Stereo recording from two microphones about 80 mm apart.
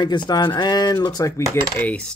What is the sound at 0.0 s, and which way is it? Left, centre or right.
Speech, left.